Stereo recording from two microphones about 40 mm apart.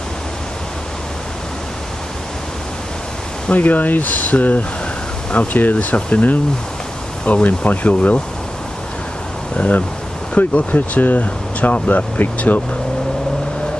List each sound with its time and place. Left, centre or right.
3.4 s speech: left
7.4 s speech: left
9.6 s speech: left